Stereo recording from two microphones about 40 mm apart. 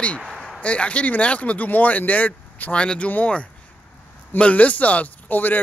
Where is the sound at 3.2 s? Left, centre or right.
Left.